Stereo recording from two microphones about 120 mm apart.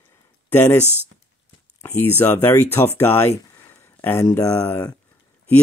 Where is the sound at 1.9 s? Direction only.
20° left (ahead or behind).